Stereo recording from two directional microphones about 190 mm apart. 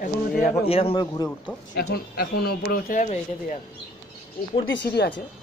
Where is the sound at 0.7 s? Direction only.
30° left (ahead or behind).